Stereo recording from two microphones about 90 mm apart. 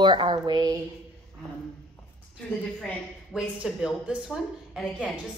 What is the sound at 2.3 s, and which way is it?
A woman's voice, 15° left (ahead or behind).